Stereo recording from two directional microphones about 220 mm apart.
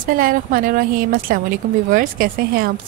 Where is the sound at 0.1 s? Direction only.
40° right (ahead or behind).